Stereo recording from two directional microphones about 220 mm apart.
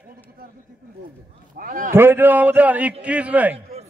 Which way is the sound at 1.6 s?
35° right (ahead or behind).